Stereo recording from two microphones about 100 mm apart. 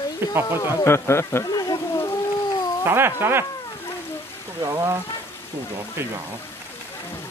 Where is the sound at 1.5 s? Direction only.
40° left (ahead or behind).